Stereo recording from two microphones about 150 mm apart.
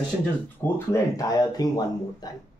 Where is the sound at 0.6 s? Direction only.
20° left (ahead or behind).